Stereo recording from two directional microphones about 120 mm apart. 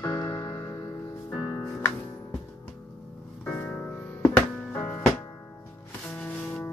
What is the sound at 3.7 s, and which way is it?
Music, 15° left (ahead or behind).